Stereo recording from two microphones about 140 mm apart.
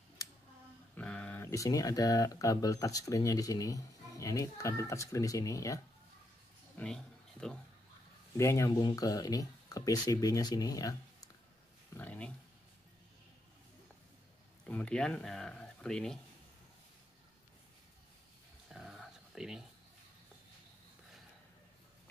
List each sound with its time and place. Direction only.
0.9 s speech: 10° left (ahead or behind); by 5.8 s 25° left (ahead or behind)
6.8 s speech: 5° left (ahead or behind)
8.4 s speech: 20° left (ahead or behind)
11.9 s a sound: 10° left (ahead or behind)
14.7 s speech: 10° left (ahead or behind)
18.7 s a sound: centre (ahead or behind)